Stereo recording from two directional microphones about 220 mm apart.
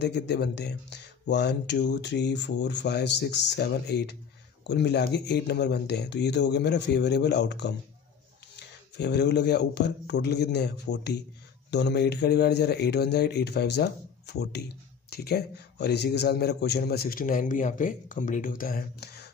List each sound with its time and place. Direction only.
0.0 s speech: 50° left (ahead or behind)